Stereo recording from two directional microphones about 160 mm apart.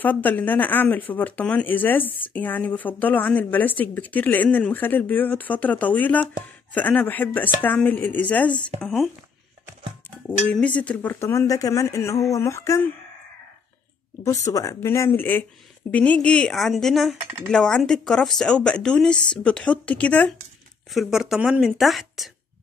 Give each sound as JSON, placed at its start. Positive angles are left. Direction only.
{"t": 0.0, "sound": "speech", "side_deg": 10}
{"t": 10.2, "sound": "speech", "side_deg": 10}
{"t": 14.2, "sound": "speech", "side_deg": 20}